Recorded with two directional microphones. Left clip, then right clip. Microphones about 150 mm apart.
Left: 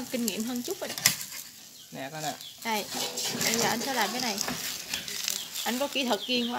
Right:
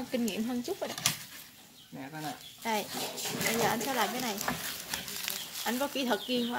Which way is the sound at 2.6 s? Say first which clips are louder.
Left 2 dB; 5° right (ahead or behind).